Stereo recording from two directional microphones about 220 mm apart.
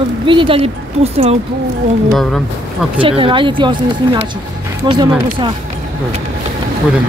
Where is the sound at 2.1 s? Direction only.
Centre (ahead or behind).